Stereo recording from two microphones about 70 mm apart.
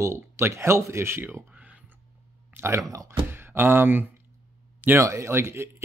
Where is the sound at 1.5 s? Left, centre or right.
Centre.